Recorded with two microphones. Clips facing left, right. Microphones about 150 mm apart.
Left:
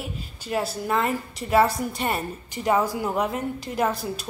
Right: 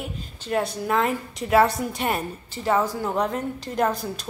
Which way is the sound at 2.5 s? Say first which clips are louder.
Even; 15° left (ahead or behind).